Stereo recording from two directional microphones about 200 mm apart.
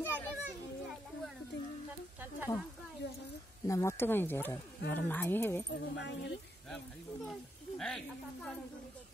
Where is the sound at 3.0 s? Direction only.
60° left (ahead or behind).